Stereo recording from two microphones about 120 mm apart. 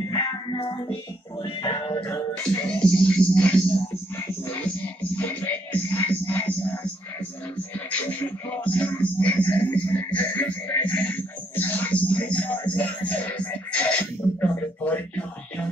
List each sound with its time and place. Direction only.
0.1 s music: 40° left (ahead or behind)
2.8 s music: 5° left (ahead or behind)
7.9 s music: 15° left (ahead or behind)